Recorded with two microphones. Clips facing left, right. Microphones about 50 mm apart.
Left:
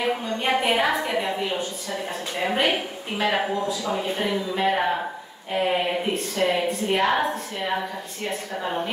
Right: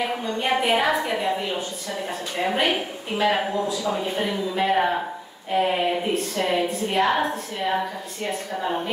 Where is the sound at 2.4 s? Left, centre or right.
Centre.